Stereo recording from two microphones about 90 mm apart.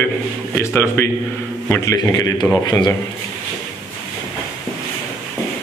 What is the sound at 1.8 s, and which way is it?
Speech, 40° left (ahead or behind).